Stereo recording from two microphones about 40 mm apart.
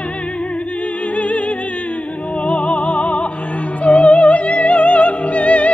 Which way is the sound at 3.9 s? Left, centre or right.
Left.